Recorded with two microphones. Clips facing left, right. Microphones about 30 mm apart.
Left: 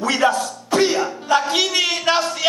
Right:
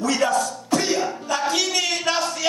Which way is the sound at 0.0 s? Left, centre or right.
Left.